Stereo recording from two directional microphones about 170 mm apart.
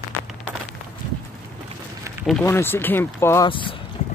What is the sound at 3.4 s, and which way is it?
Speech, 30° left (ahead or behind).